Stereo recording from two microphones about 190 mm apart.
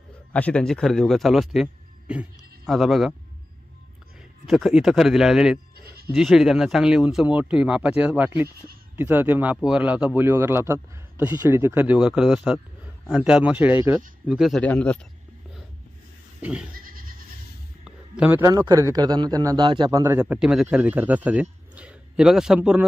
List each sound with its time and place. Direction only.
0.3 s a man's voice: 5° left (ahead or behind)
4.5 s a man's voice: centre (ahead or behind)
16.3 s goat: 5° right (ahead or behind)
16.7 s goat: 50° right (ahead or behind)
17.8 s a man's voice: 5° right (ahead or behind)